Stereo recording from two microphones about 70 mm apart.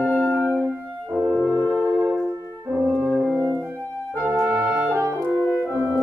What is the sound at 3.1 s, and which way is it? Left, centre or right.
Music, right.